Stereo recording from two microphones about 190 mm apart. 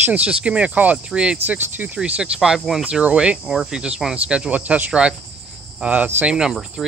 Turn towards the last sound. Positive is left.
turn(degrees=-5)  # may be behind; listen again after turning